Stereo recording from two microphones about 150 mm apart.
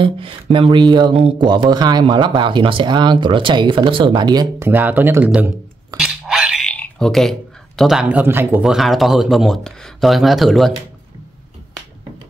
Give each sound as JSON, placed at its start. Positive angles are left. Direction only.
{"t": 0.0, "sound": "speech", "side_deg": -35}
{"t": 4.6, "sound": "speech", "side_deg": -10}
{"t": 5.9, "sound": "a sound", "side_deg": -5}
{"t": 8.6, "sound": "speech", "side_deg": 0}